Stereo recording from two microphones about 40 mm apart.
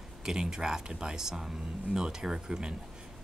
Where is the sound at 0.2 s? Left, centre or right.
Centre.